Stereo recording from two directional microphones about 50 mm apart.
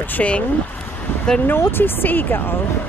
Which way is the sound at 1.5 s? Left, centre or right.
Left.